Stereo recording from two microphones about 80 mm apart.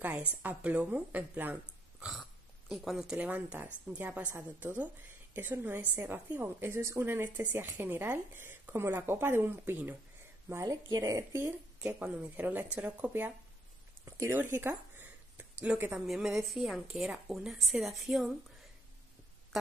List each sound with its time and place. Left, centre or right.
0.4 s speech: centre
2.7 s a woman's voice: centre
3.2 s speech: right
10.6 s speech: right
11.8 s speech: centre
14.0 s a sound: right; by 16.0 s centre
16.1 s a woman's voice: centre